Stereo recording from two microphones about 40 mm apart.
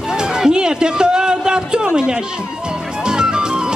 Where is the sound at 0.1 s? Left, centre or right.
Centre.